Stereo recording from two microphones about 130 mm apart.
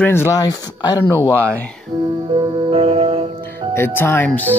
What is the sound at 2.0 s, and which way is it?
Music, 40° right (ahead or behind).